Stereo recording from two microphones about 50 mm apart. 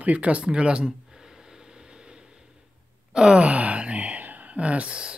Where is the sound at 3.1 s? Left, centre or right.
Centre.